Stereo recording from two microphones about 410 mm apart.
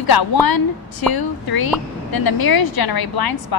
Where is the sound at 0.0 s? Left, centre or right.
Left.